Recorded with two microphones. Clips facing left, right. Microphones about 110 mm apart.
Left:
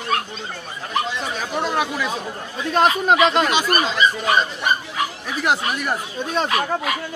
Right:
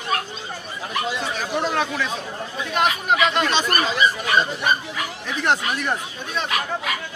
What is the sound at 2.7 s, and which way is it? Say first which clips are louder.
Speech: left 4 dB; 35° left (ahead or behind).